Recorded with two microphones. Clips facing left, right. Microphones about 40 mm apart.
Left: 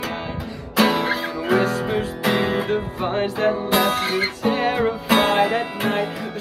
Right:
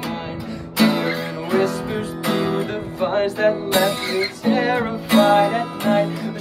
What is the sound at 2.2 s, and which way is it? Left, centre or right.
Music, left.